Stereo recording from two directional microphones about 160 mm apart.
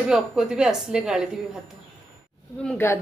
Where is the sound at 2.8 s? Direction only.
15° left (ahead or behind).